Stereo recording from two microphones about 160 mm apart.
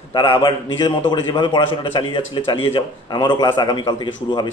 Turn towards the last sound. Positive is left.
turn(degrees=25)  # may be behind; listen again after turning